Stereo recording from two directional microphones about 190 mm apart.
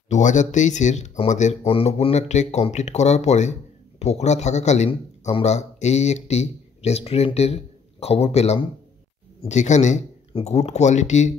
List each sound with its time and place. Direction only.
0.1 s a man's voice: 40° left (ahead or behind)